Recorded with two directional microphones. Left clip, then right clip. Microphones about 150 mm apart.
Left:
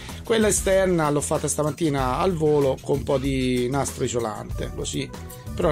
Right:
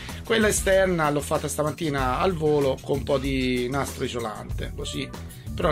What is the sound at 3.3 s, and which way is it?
Speech, 45° left (ahead or behind).